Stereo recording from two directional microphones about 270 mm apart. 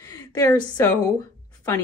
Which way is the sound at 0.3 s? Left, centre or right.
Centre.